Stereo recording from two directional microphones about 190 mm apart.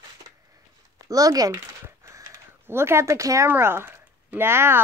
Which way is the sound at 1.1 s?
20° right (ahead or behind).